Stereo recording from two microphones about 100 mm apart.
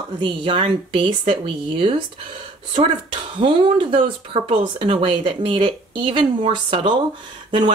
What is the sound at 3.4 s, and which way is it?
Speech, 55° right (ahead or behind).